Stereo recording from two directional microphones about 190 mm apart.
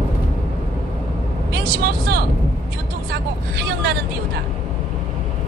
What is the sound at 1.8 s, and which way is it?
Speech, 50° right (ahead or behind).